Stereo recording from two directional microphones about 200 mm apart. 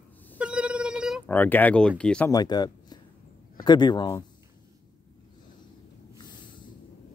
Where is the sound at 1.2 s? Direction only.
10° left (ahead or behind).